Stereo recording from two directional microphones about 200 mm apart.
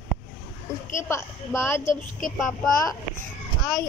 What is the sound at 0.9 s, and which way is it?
Speech, 15° left (ahead or behind).